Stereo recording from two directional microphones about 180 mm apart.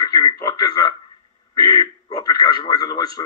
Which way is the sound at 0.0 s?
20° left (ahead or behind).